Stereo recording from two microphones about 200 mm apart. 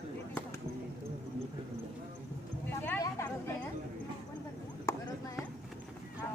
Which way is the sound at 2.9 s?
15° left (ahead or behind).